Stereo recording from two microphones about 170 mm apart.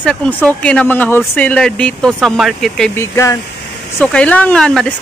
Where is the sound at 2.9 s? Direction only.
15° left (ahead or behind).